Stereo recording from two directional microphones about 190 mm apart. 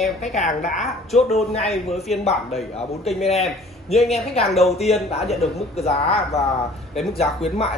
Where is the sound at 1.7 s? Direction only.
Centre (ahead or behind).